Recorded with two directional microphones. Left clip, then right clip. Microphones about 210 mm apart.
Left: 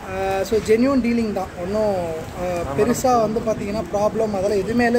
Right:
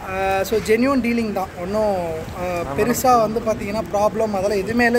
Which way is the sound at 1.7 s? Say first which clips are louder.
Right 1 dB; 20° right (ahead or behind).